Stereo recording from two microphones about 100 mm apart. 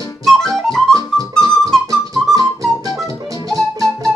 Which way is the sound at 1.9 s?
35° right (ahead or behind).